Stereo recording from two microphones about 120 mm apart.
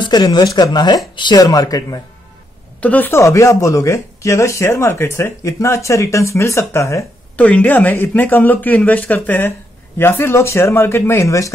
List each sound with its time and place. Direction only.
0.0 s speech: 35° left (ahead or behind)
2.8 s speech: 15° left (ahead or behind)
7.3 s speech: 10° left (ahead or behind)